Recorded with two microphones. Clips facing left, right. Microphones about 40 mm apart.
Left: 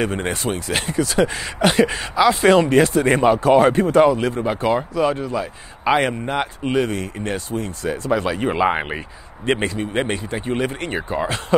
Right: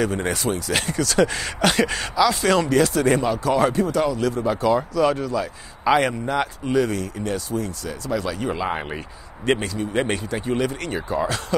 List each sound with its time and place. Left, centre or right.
0.0 s speech: left
0.8 s speech: centre
2.1 s speech: left
10.0 s speech: centre
10.4 s speech: left